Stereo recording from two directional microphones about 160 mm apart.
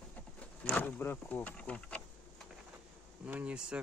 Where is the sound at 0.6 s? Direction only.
10° left (ahead or behind).